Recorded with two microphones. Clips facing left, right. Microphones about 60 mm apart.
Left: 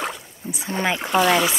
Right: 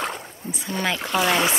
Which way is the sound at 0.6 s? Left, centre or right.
Left.